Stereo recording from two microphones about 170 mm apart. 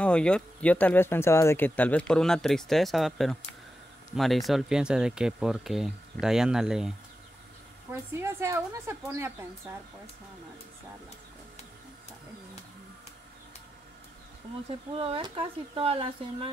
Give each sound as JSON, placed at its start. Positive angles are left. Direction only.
{"t": 0.0, "sound": "speech", "side_deg": 5}
{"t": 8.1, "sound": "a woman's voice", "side_deg": -15}
{"t": 15.0, "sound": "speech", "side_deg": -30}